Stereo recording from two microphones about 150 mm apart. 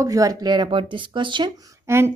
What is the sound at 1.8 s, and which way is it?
Speech, 15° right (ahead or behind).